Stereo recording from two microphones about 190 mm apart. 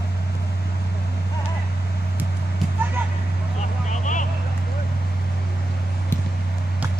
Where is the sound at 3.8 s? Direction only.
40° left (ahead or behind).